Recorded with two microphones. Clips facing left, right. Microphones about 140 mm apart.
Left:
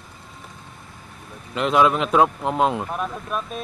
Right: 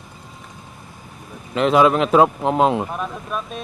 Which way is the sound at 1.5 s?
Centre (ahead or behind).